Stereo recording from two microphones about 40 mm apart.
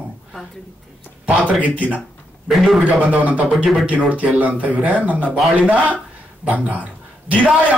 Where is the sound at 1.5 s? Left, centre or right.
Right.